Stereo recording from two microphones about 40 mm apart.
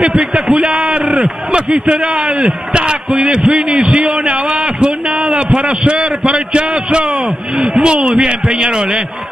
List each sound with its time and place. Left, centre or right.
0.0 s a man's voice: right